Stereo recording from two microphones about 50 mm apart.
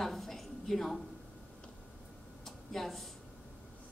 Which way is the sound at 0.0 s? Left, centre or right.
Centre.